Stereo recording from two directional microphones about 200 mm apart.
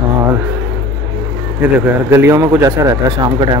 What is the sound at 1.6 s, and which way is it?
A man's voice, 10° right (ahead or behind).